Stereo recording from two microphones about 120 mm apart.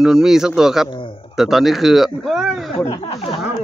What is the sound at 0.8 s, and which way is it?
Speech, 45° left (ahead or behind).